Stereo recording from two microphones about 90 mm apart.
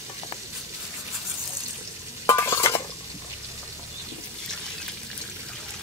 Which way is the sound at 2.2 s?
35° left (ahead or behind).